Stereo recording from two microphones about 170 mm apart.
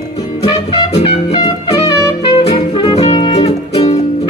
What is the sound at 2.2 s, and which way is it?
Music, 30° left (ahead or behind).